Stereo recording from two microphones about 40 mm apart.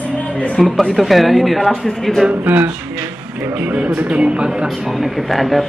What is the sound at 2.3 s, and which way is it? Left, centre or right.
Speech, right.